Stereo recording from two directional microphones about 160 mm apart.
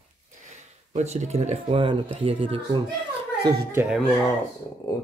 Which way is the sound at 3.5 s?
15° right (ahead or behind).